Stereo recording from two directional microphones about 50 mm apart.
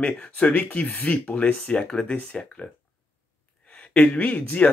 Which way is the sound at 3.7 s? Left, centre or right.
Left.